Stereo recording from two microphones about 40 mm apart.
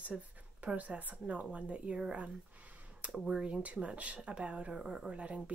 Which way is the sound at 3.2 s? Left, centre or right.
Right.